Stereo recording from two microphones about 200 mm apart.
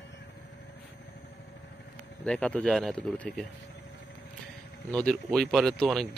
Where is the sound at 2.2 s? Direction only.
5° left (ahead or behind).